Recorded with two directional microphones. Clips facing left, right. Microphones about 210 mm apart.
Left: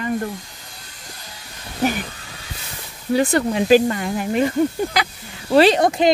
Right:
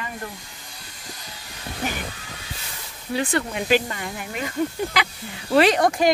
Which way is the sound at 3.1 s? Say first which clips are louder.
Left 7 dB; 35° left (ahead or behind).